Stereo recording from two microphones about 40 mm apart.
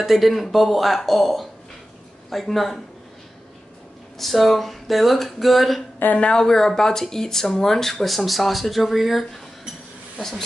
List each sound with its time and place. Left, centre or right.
0.0 s speech: centre
4.2 s speech: centre
6.0 s a woman's voice: left
6.3 s speech: centre